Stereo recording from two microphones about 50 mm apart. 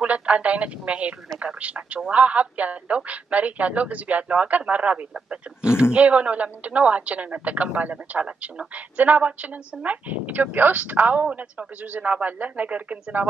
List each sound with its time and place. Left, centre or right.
0.0 s a woman's voice: right